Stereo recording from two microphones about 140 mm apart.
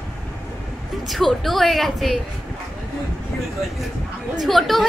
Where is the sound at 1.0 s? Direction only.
Centre (ahead or behind).